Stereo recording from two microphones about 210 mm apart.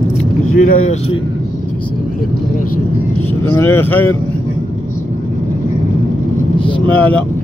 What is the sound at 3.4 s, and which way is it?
Speech, 10° left (ahead or behind).